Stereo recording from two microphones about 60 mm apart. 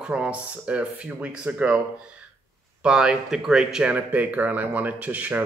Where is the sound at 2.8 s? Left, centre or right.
Centre.